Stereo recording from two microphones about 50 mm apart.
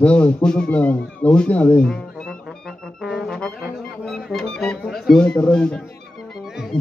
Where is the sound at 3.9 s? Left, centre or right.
Centre.